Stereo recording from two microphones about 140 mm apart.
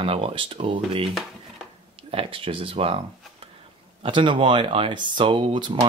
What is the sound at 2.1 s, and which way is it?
Speech, 40° right (ahead or behind).